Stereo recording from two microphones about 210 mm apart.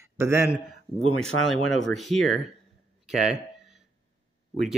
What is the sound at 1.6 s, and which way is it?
Speech, centre (ahead or behind).